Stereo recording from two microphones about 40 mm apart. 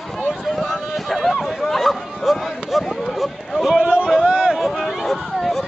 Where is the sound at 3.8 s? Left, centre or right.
Right.